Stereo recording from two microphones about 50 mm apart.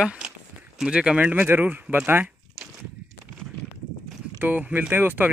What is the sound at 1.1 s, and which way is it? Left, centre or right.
Speech, right.